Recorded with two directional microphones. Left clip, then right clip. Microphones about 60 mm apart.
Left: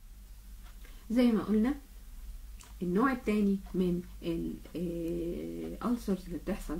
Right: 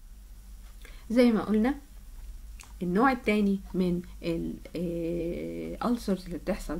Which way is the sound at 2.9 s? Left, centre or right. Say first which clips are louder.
Right 5 dB; right.